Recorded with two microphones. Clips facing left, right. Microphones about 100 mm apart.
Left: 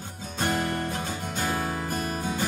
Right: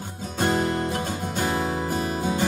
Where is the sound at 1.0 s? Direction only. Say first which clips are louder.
Right 4 dB; 15° right (ahead or behind).